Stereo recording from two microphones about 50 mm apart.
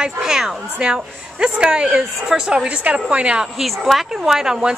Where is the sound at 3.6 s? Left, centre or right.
Centre.